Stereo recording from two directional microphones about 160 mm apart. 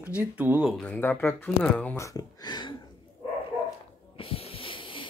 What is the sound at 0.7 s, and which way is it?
Speech, 5° left (ahead or behind).